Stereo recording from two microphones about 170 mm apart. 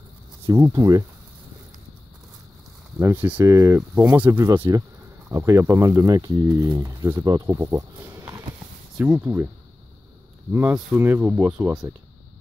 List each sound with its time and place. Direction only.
0.5 s speech: 25° right (ahead or behind)
3.0 s speech: 15° right (ahead or behind)
10.5 s speech: 10° right (ahead or behind)